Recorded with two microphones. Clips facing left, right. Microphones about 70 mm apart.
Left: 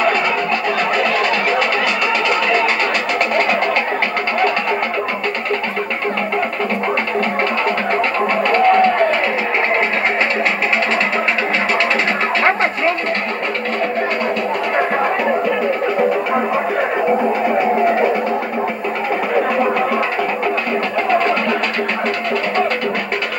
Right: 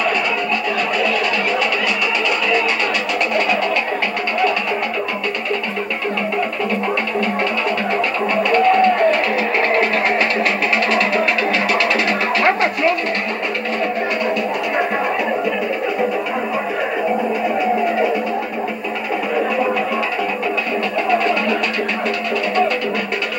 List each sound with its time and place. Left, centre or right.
8.5 s music: left
21.1 s music: left